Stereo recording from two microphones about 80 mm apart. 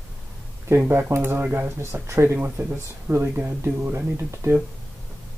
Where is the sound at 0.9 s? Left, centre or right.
Right.